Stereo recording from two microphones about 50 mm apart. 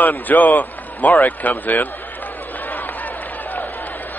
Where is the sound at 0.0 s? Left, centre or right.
Left.